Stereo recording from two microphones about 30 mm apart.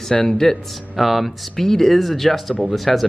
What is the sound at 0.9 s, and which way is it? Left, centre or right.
Speech, centre.